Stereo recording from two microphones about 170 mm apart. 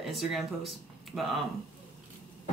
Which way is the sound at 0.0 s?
Centre (ahead or behind).